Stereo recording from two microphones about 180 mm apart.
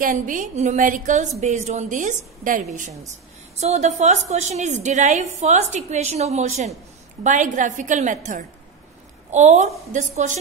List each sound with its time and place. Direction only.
0.0 s a woman's voice: 45° right (ahead or behind)